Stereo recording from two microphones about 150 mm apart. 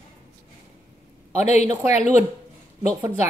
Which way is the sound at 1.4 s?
50° left (ahead or behind).